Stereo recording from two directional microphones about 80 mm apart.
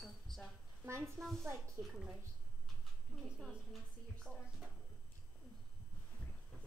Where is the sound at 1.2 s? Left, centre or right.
Right.